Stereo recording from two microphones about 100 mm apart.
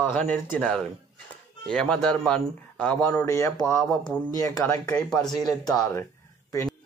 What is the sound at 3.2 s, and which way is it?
Speech, 30° left (ahead or behind).